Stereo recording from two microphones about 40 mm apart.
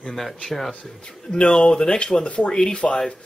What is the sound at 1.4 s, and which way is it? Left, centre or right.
Speech, left.